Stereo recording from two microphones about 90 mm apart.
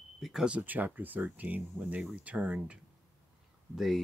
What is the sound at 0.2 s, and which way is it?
Speech, 5° right (ahead or behind).